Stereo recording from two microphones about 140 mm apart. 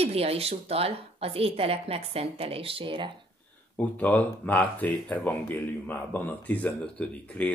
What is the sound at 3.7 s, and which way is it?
Speech, 10° left (ahead or behind).